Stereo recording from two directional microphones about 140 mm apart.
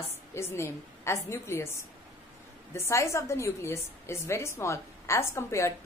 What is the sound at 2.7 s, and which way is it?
A woman's voice, 20° left (ahead or behind).